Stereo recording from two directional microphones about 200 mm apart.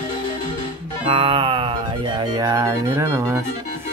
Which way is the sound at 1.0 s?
25° right (ahead or behind).